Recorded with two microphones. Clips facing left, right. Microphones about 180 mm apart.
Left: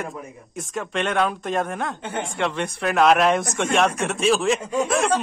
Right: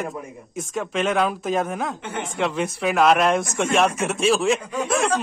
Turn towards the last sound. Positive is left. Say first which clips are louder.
# left 1 dB
turn(degrees=0)  # may be behind; listen again after turning